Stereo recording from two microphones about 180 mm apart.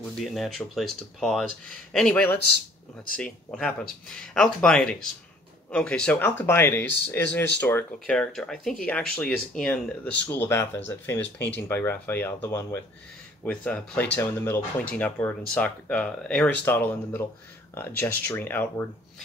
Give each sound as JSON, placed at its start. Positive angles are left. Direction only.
{"t": 0.2, "sound": "speech", "side_deg": 0}
{"t": 11.2, "sound": "speech", "side_deg": 75}
{"t": 11.6, "sound": "speech", "side_deg": 15}